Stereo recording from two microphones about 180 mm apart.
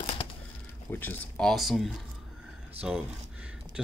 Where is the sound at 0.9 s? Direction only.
10° left (ahead or behind).